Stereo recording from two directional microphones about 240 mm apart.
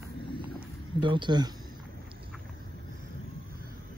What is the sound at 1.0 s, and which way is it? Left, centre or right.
Speech, centre.